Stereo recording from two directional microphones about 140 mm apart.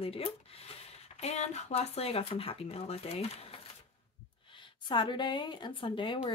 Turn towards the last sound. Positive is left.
turn(degrees=35)  # may be behind; listen again after turning